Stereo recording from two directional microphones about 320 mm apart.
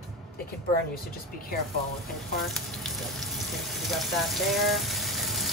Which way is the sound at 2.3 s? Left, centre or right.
Centre.